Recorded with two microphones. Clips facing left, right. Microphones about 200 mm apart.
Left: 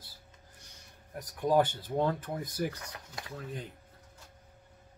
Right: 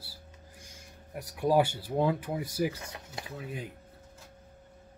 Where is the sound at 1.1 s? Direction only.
10° right (ahead or behind).